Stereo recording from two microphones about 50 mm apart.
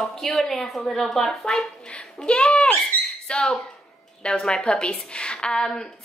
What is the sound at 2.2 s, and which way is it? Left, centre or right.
A child's voice, centre.